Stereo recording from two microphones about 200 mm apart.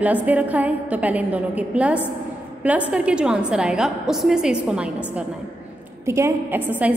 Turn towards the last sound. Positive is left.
turn(degrees=-10)  # may be behind; listen again after turning